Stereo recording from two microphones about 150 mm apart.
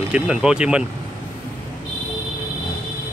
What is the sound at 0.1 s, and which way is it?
Speech, 5° right (ahead or behind).